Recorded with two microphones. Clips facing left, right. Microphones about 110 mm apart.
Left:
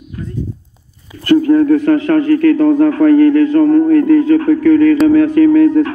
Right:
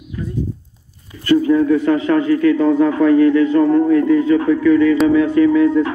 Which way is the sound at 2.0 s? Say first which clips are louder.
Left 3 dB; 50° left (ahead or behind).